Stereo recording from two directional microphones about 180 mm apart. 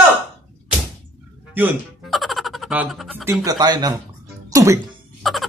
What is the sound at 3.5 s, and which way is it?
Speech, 25° right (ahead or behind).